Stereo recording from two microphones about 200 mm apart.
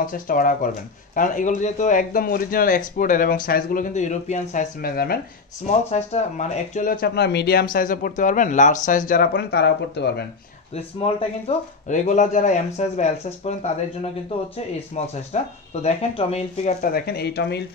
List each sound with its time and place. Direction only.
0.0 s speech: 45° left (ahead or behind)
5.9 s speech: 35° left (ahead or behind); by 10.2 s 55° left (ahead or behind)
10.7 s speech: 30° left (ahead or behind)
15.0 s speech: 35° left (ahead or behind)
16.9 s speech: 50° left (ahead or behind)